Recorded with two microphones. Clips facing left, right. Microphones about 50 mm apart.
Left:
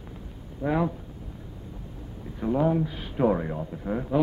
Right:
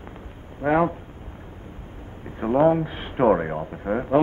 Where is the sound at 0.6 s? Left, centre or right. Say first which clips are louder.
Right 6 dB; right.